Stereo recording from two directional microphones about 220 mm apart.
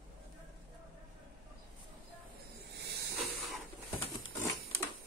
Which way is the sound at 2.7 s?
50° right (ahead or behind).